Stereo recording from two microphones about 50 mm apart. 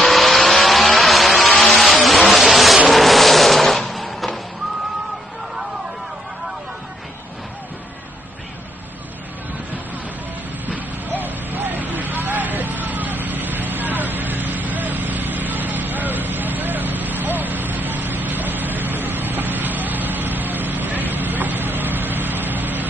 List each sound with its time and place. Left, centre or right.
0.0 s vehicle: centre
2.9 s a sound: centre
10.7 s vehicle: right